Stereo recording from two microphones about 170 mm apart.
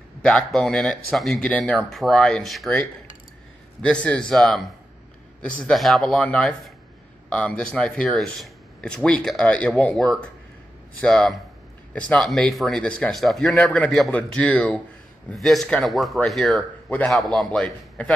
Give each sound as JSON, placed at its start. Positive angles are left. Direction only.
{"t": 0.2, "sound": "speech", "side_deg": 5}